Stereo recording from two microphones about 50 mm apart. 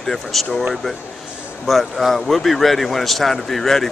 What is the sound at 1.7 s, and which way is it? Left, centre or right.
A man's voice, centre.